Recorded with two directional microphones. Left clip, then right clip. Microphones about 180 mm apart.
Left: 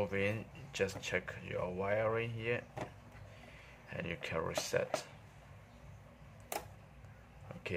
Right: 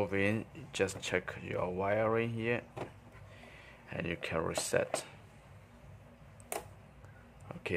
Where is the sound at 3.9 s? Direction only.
20° right (ahead or behind).